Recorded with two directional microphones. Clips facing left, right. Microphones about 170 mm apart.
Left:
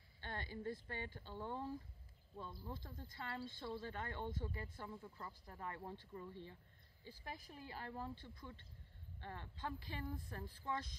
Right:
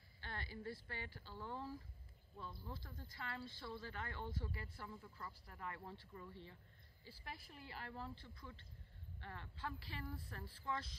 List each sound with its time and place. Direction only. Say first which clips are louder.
0.2 s speech: left 3 dB; 20° left (ahead or behind)
7.6 s speech: left 2 dB; 20° left (ahead or behind)